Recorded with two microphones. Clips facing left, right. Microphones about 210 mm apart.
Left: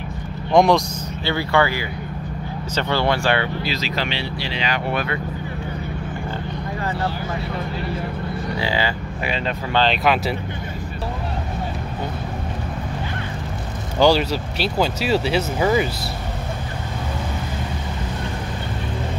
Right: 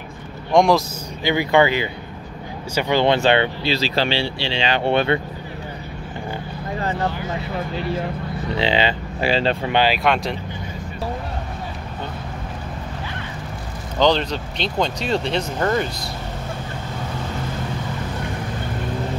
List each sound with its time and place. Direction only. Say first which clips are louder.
0.5 s speech: even; centre (ahead or behind)
1.2 s speech: right 3 dB; 15° right (ahead or behind)
8.5 s speech: right 5 dB; 20° right (ahead or behind)
10.0 s speech: left 1 dB; 5° left (ahead or behind)
13.9 s speech: left 2 dB; 10° left (ahead or behind)